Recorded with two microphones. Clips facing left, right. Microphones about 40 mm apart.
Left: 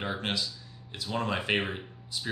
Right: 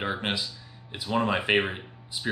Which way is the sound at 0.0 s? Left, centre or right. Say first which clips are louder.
Right 3 dB; centre.